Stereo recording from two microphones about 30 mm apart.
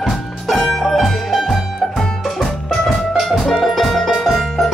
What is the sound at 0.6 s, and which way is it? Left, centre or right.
Music, centre.